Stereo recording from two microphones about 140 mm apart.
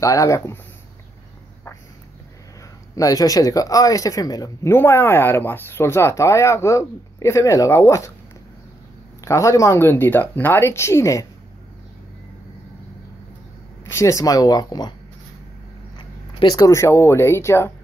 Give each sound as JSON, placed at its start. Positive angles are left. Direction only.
{"t": 0.0, "sound": "speech", "side_deg": 25}
{"t": 3.0, "sound": "speech", "side_deg": 25}
{"t": 4.7, "sound": "speech", "side_deg": 15}
{"t": 9.2, "sound": "speech", "side_deg": 20}
{"t": 13.8, "sound": "speech", "side_deg": 20}
{"t": 16.0, "sound": "speech", "side_deg": 35}